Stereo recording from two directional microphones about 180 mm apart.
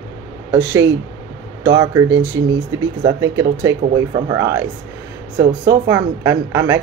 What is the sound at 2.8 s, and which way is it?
Speech, 20° right (ahead or behind).